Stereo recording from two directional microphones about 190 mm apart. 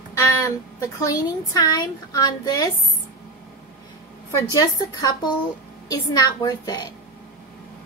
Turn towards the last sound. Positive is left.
turn(degrees=20)  # may be behind; listen again after turning